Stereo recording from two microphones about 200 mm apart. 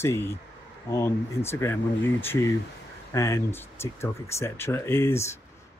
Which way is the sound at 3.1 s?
15° left (ahead or behind).